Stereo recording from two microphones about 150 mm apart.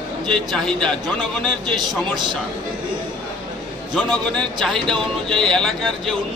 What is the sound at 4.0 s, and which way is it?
Speech, 5° left (ahead or behind).